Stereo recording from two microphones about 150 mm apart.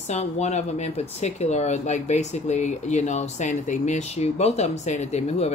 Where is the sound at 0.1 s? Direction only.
45° left (ahead or behind).